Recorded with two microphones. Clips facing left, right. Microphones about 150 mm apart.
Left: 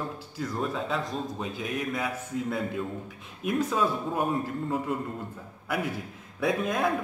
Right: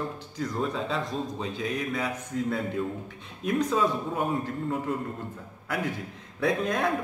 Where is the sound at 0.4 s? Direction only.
Centre (ahead or behind).